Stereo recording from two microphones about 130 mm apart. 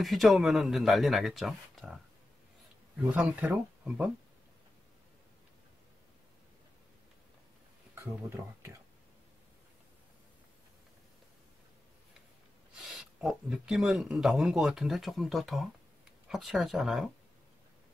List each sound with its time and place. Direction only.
0.0 s speech: centre (ahead or behind)
3.0 s speech: 10° right (ahead or behind)
7.9 s speech: 20° right (ahead or behind)
12.7 s speech: 5° right (ahead or behind)